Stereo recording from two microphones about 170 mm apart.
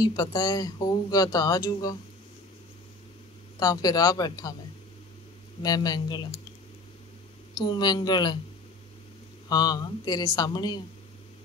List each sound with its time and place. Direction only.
0.0 s speech: 20° left (ahead or behind)
3.5 s speech: 20° left (ahead or behind)
5.6 s speech: 25° left (ahead or behind)
7.5 s speech: 25° left (ahead or behind)
9.5 s speech: 25° left (ahead or behind)